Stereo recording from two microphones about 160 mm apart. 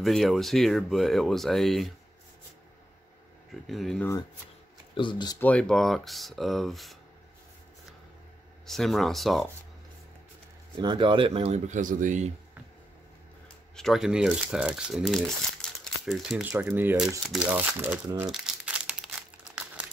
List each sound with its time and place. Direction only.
0.0 s speech: centre (ahead or behind)
3.6 s speech: centre (ahead or behind)
4.9 s speech: 30° left (ahead or behind)
5.4 s speech: 10° left (ahead or behind)
8.6 s speech: centre (ahead or behind)
10.8 s speech: 30° right (ahead or behind); by 12.3 s 50° right (ahead or behind)
13.7 s speech: centre (ahead or behind)
17.3 s crumpling: 10° right (ahead or behind)